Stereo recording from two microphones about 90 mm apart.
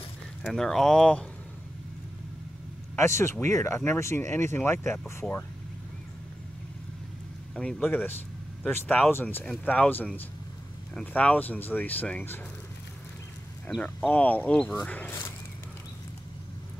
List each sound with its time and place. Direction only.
0.4 s speech: 5° left (ahead or behind)
3.0 s speech: 30° left (ahead or behind)
7.5 s speech: 15° left (ahead or behind)
13.7 s speech: 15° left (ahead or behind)